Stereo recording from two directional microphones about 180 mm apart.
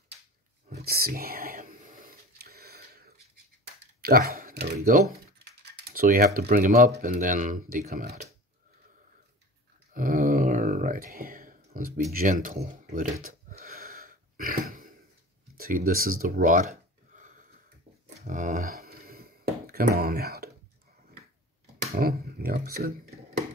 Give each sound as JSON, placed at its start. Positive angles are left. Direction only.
{"t": 0.8, "sound": "whispering", "side_deg": -60}
{"t": 4.3, "sound": "computer keyboard", "side_deg": -55}
{"t": 4.7, "sound": "speech", "side_deg": -45}
{"t": 5.1, "sound": "speech", "side_deg": -60}
{"t": 9.9, "sound": "a sound", "side_deg": -50}
{"t": 12.1, "sound": "speech", "side_deg": -50}
{"t": 13.3, "sound": "a sound", "side_deg": -50}
{"t": 15.5, "sound": "speech", "side_deg": -55}
{"t": 17.1, "sound": "a sound", "side_deg": -45}
{"t": 18.2, "sound": "music", "side_deg": -45}
{"t": 21.9, "sound": "speech", "side_deg": -55}